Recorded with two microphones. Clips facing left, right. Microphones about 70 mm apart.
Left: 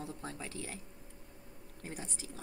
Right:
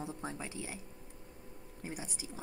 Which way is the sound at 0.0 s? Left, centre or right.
Centre.